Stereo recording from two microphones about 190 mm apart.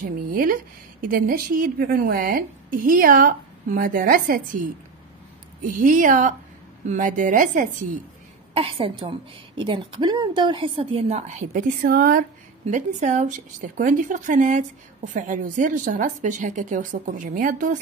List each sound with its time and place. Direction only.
0.3 s a woman's voice: 50° right (ahead or behind)
8.5 s a woman's voice: 30° right (ahead or behind); by 17.7 s 45° right (ahead or behind)